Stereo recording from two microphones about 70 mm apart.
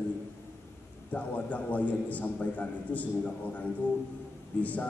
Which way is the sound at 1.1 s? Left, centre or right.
Left.